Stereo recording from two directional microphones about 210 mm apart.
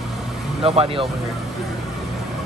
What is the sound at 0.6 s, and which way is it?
Speech, 25° right (ahead or behind).